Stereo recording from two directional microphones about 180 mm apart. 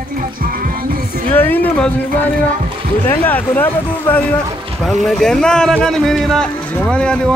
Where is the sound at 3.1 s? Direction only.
10° left (ahead or behind).